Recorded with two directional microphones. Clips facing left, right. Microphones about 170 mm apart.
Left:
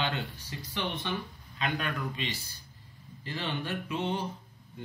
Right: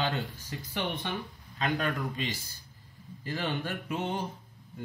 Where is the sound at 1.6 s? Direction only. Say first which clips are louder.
Right 3 dB; 45° right (ahead or behind).